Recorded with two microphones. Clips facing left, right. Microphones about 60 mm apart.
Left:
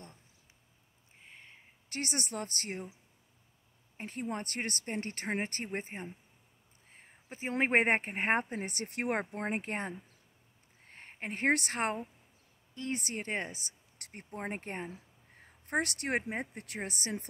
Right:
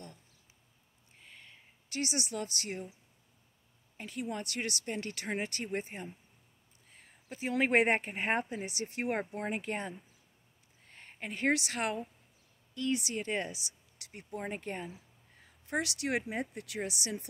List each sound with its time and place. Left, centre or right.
1.2 s a sound: left
1.9 s a woman's voice: left
3.9 s speech: left
9.3 s speech: left